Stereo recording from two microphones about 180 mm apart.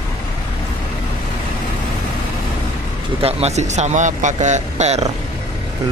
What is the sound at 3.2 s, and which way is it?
Speech, 35° right (ahead or behind).